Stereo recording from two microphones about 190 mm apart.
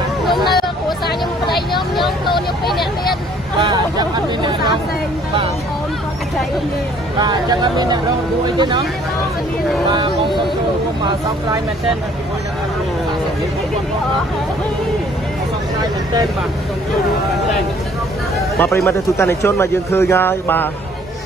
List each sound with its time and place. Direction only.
0.2 s hubbub: centre (ahead or behind)
0.8 s hubbub: 25° left (ahead or behind)
3.5 s speech: 20° right (ahead or behind)
7.2 s speech: 20° right (ahead or behind)
9.8 s speech: 25° right (ahead or behind)
18.6 s speech: 15° left (ahead or behind)